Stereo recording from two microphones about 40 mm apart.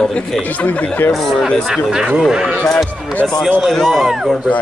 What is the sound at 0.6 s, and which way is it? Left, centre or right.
Speech, left.